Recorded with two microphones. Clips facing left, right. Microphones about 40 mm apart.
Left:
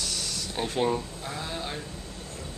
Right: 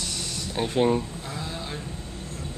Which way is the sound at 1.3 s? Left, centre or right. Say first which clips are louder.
Left 4 dB; centre.